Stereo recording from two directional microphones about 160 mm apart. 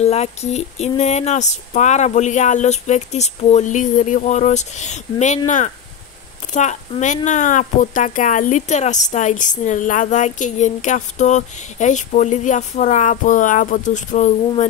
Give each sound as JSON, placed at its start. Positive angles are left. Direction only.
{"t": 0.0, "sound": "speech", "side_deg": 40}
{"t": 6.5, "sound": "speech", "side_deg": 50}